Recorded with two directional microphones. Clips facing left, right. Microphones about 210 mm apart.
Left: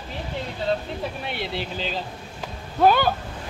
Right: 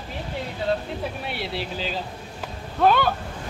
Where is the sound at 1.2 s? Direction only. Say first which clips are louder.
Even; 5° right (ahead or behind).